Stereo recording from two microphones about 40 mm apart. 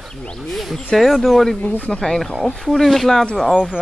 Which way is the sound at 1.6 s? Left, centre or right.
Left.